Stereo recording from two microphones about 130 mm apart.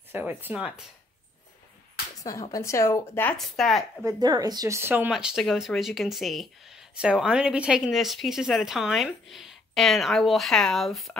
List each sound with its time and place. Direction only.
0.1 s speech: 15° right (ahead or behind)
2.5 s speech: 20° left (ahead or behind)
3.3 s speech: centre (ahead or behind)
4.2 s speech: 30° right (ahead or behind); by 5.1 s 15° right (ahead or behind)
5.1 s speech: centre (ahead or behind)